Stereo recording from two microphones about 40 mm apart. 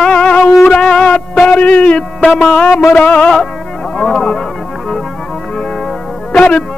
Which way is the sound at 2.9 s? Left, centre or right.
Left.